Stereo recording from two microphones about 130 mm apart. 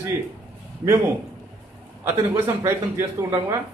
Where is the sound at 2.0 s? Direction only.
20° right (ahead or behind).